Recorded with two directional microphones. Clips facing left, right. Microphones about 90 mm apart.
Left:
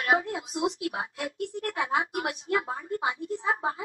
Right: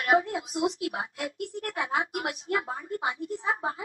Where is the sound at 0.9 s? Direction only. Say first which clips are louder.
Even; 25° left (ahead or behind).